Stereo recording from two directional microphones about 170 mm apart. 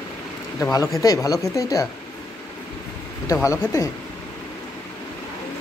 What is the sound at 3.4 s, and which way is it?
Speech, 20° left (ahead or behind).